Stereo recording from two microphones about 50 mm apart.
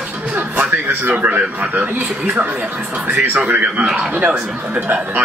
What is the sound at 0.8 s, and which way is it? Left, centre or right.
Speech, right.